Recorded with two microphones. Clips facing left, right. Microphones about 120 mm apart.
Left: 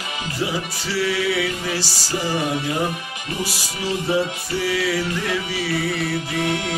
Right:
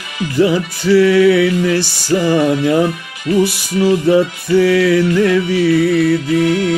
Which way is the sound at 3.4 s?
60° right (ahead or behind).